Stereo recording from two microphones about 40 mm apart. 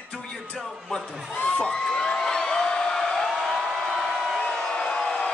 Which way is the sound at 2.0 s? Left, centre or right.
Centre.